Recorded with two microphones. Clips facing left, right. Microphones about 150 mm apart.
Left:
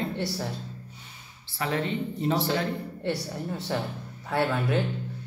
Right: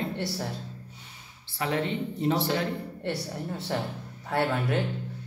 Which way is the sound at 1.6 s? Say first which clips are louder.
Even; 20° right (ahead or behind).